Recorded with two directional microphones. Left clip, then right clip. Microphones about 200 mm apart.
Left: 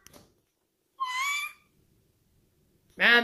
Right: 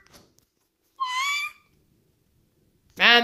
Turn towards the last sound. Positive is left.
turn(degrees=-15)  # may be behind; listen again after turning